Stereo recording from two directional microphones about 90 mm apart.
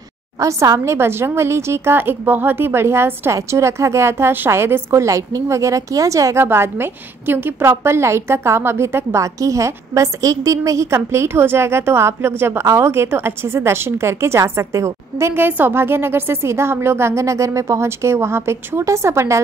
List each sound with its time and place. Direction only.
0.4 s a woman's voice: 35° right (ahead or behind)